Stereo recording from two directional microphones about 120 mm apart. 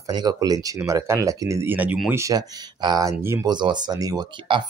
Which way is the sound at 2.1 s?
25° right (ahead or behind).